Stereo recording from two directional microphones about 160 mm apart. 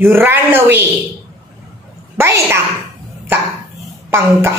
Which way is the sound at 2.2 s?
15° right (ahead or behind).